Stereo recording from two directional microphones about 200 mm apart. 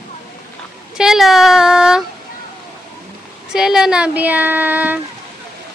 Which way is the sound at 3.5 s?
Centre (ahead or behind).